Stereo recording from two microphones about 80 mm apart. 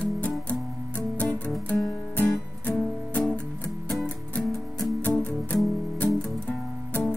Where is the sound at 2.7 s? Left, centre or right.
Centre.